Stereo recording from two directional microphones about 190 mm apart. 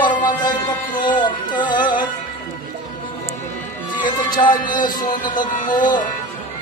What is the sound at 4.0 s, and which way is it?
Speech, 25° left (ahead or behind).